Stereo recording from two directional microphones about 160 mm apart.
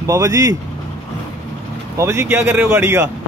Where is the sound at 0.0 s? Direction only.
20° right (ahead or behind).